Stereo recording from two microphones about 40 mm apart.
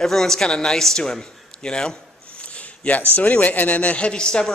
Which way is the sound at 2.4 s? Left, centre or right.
Left.